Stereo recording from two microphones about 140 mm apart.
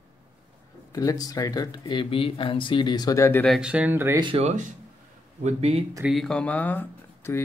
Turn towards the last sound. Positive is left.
turn(degrees=15)  # may be behind; listen again after turning